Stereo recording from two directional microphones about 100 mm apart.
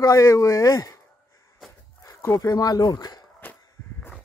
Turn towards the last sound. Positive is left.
turn(degrees=20)  # may be behind; listen again after turning